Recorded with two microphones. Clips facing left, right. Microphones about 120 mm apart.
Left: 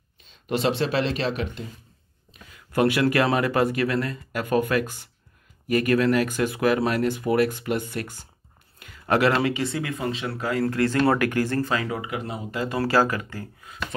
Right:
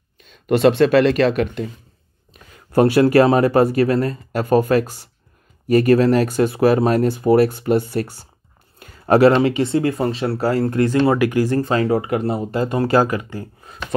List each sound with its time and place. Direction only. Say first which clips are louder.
0.2 s speech: right 10 dB; 55° right (ahead or behind)
2.7 s speech: right 8 dB; 30° right (ahead or behind)
11.1 s speech: right 5 dB; 15° right (ahead or behind)
11.6 s speech: right 9 dB; 30° right (ahead or behind)
12.0 s speech: right 10 dB; 45° right (ahead or behind); by 13.5 s 20° right (ahead or behind)